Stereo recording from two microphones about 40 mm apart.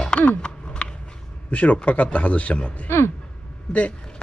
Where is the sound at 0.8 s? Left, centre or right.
Left.